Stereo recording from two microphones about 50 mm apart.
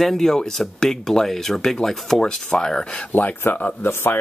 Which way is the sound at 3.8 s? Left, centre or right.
Left.